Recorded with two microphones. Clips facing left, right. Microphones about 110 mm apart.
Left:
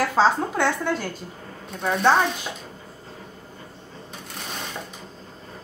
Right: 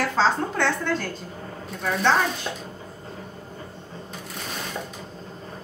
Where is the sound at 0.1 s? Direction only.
10° left (ahead or behind).